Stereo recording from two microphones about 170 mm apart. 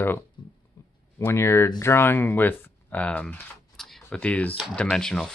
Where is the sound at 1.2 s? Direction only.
15° left (ahead or behind).